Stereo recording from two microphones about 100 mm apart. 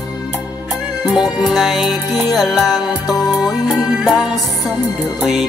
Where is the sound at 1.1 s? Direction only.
Centre (ahead or behind).